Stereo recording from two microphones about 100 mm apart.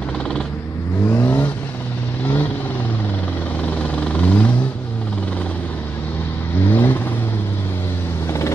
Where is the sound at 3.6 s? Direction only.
15° left (ahead or behind).